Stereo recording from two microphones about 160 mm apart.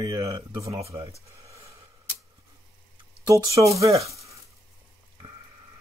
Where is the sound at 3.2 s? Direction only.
20° right (ahead or behind).